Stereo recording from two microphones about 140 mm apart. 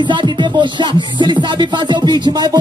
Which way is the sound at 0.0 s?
35° right (ahead or behind).